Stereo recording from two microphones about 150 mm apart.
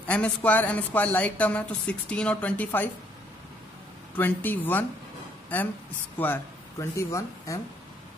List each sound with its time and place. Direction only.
0.0 s speech: 10° left (ahead or behind)
4.2 s speech: 10° left (ahead or behind)